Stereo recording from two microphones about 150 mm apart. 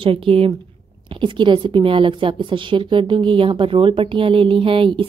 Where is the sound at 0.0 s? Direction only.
35° right (ahead or behind).